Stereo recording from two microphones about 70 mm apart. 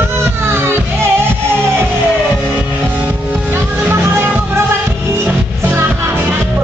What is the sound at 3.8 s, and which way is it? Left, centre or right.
Music, right.